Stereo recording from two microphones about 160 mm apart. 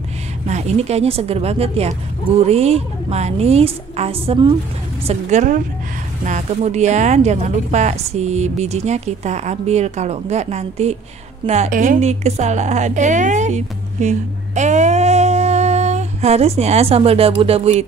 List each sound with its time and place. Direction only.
0.5 s a woman's voice: 45° right (ahead or behind)
5.0 s a woman's voice: 50° right (ahead or behind)